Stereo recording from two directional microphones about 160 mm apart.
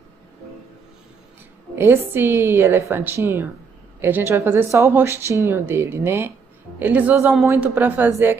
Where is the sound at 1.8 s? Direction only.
15° right (ahead or behind).